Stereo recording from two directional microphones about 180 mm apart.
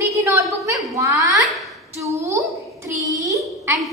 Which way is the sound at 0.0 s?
15° right (ahead or behind).